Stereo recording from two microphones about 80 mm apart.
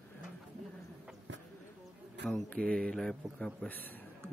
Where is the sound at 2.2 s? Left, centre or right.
Centre.